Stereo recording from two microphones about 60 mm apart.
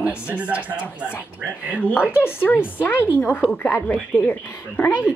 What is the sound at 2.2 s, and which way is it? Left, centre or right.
A woman's voice, left.